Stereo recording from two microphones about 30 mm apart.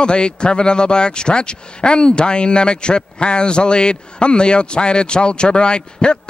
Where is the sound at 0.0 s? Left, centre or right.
Left.